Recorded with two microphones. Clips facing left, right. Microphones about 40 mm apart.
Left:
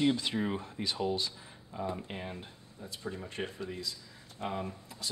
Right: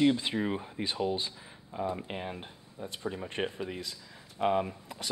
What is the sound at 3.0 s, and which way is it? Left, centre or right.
Speech, right.